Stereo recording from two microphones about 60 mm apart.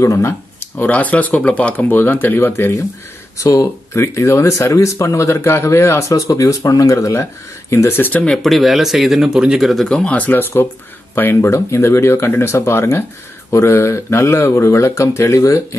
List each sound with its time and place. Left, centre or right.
0.0 s speech: left
0.6 s speech: left
2.5 s speech: left
3.3 s speech: left
7.7 s speech: left
8.3 s speech: centre
9.8 s speech: centre; by 11.5 s left
11.5 s speech: left